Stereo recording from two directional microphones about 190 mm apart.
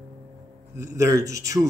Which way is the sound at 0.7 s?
15° right (ahead or behind).